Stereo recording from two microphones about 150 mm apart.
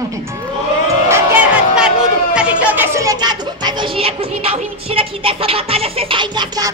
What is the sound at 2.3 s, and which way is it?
Speech, 10° right (ahead or behind).